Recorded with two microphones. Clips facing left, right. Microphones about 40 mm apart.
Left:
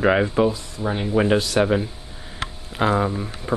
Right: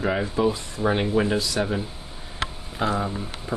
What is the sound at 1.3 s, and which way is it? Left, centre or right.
Speech, left.